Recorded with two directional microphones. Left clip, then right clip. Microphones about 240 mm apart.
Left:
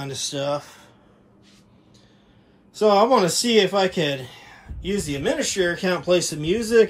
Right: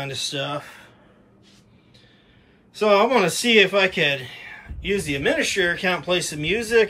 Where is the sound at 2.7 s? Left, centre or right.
Centre.